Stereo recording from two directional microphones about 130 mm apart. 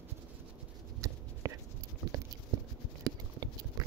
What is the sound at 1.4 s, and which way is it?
Dog, 25° right (ahead or behind).